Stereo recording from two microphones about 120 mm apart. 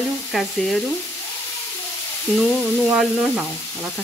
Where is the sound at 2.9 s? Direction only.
10° right (ahead or behind).